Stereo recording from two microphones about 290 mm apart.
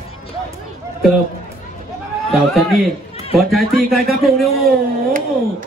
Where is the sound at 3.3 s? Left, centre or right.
Centre.